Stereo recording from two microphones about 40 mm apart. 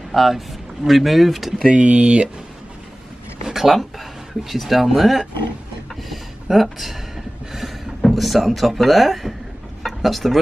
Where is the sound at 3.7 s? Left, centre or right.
Centre.